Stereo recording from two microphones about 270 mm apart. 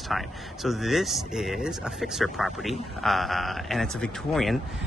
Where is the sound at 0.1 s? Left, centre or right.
Centre.